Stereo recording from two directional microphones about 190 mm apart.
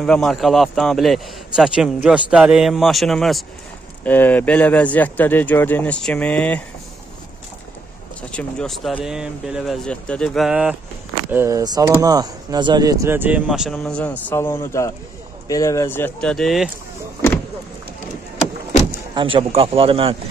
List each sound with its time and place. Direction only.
0.0 s a man's voice: 5° left (ahead or behind)
8.3 s a man's voice: 5° left (ahead or behind)
19.1 s a man's voice: 25° right (ahead or behind)